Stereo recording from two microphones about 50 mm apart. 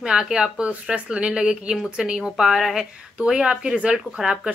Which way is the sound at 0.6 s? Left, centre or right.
Right.